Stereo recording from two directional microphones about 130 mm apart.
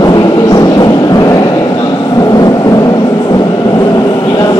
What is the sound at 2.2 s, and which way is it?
Train, 30° left (ahead or behind).